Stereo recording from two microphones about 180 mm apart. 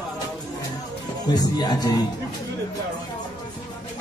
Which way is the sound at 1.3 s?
20° left (ahead or behind).